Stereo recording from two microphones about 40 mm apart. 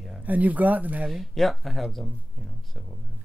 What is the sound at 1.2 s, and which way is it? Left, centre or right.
Speech, centre.